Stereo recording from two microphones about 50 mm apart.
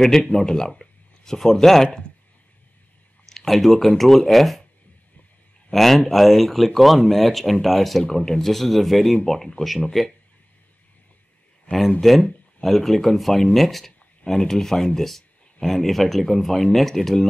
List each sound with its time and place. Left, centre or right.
0.0 s speech: centre
3.3 s speech: centre
5.7 s speech: centre
11.7 s speech: left
12.0 s speech: centre